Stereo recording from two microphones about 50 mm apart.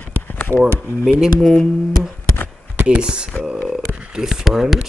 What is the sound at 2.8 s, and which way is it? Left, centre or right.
Speech, centre.